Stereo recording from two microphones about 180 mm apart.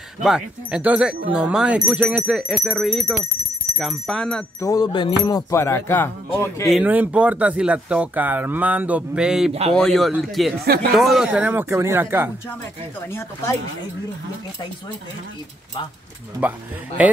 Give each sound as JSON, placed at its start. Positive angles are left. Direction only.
{"t": 0.2, "sound": "speech", "side_deg": -5}
{"t": 4.6, "sound": "speech", "side_deg": 20}
{"t": 6.7, "sound": "speech", "side_deg": -10}
{"t": 9.5, "sound": "speech", "side_deg": -35}
{"t": 9.8, "sound": "speech", "side_deg": 0}
{"t": 10.6, "sound": "speech", "side_deg": -60}
{"t": 11.0, "sound": "speech", "side_deg": 0}
{"t": 13.0, "sound": "speech", "side_deg": 15}
{"t": 16.3, "sound": "speech", "side_deg": -10}